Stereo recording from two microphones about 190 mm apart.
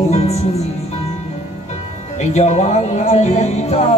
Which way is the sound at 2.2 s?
35° left (ahead or behind).